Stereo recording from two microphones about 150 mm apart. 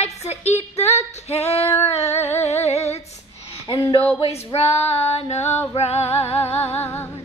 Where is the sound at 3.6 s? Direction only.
30° left (ahead or behind).